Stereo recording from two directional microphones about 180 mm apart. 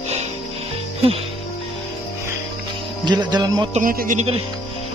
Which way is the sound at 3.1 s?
25° right (ahead or behind).